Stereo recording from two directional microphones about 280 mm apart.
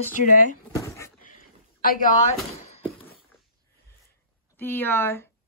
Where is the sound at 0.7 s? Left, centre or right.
Centre.